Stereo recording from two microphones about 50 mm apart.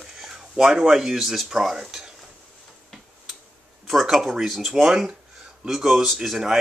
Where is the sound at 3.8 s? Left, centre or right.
Centre.